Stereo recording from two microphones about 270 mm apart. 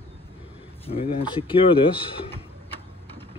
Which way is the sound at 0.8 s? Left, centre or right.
Left.